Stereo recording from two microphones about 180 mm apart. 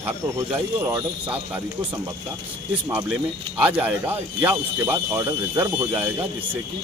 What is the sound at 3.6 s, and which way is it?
Speech, 10° right (ahead or behind).